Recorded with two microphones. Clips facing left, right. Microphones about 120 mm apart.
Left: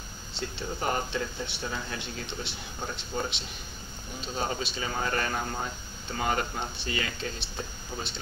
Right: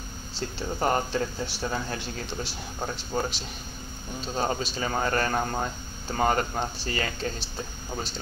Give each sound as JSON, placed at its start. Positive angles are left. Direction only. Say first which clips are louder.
{"t": 0.3, "sound": "speech", "louder": "right 3 dB", "side_deg": -35}